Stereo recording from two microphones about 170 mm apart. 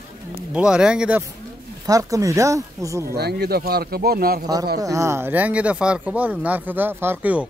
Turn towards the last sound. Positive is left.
turn(degrees=-10)  # may be behind; listen again after turning